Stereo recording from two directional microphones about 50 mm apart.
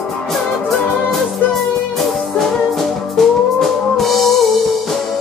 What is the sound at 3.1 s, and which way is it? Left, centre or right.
Music, centre.